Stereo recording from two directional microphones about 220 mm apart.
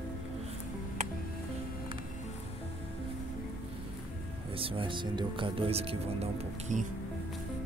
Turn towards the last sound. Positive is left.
turn(degrees=-30)  # may be behind; listen again after turning